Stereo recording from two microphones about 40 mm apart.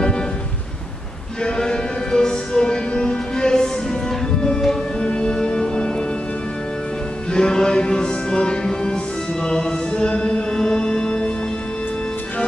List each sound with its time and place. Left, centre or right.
1.4 s music: centre
5.0 s music: left
7.3 s music: centre